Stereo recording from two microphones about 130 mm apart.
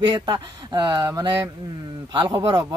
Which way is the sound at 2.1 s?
40° right (ahead or behind).